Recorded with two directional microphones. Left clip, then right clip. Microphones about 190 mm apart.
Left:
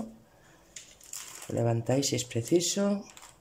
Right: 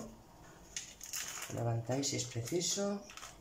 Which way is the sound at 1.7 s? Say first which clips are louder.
Left 8 dB; 55° left (ahead or behind).